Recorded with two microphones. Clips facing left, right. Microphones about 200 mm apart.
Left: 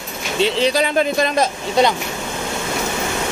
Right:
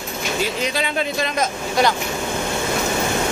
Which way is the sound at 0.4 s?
30° left (ahead or behind).